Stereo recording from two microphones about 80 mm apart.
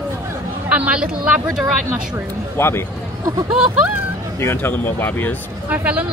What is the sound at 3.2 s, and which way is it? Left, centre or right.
Speech, right.